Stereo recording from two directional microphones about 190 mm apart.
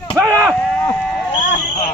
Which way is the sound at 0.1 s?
10° right (ahead or behind).